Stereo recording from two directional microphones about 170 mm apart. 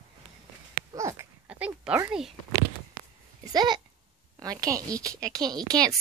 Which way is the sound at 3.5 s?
25° right (ahead or behind).